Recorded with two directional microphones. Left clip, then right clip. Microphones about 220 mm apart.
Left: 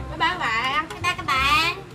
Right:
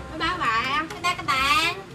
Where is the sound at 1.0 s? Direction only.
15° right (ahead or behind).